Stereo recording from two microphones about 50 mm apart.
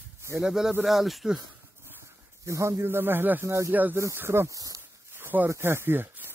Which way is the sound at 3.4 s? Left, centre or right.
Right.